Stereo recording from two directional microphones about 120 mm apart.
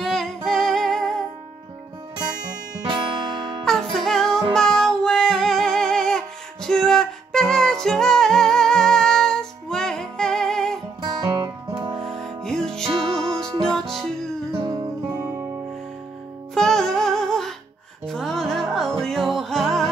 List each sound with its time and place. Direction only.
0.0 s music: centre (ahead or behind)
3.3 s music: centre (ahead or behind)
11.2 s music: 30° right (ahead or behind)
12.0 s music: 5° left (ahead or behind)
14.5 s music: 40° right (ahead or behind)
15.1 s music: 25° right (ahead or behind)
16.5 s music: 5° left (ahead or behind)